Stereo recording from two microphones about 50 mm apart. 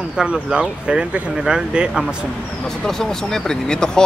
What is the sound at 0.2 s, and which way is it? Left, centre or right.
Speech, centre.